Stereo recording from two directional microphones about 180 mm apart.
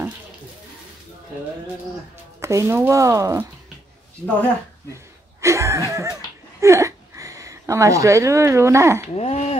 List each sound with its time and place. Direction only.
2.4 s speech: 15° right (ahead or behind)
5.4 s a sound: 15° right (ahead or behind)
5.9 s speech: 15° right (ahead or behind)
9.1 s speech: 35° left (ahead or behind)